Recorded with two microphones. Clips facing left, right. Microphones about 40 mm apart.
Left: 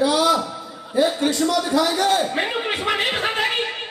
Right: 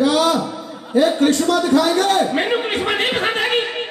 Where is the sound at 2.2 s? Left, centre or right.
Right.